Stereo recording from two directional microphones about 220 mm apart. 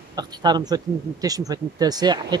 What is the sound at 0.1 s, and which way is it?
Speech, 20° right (ahead or behind).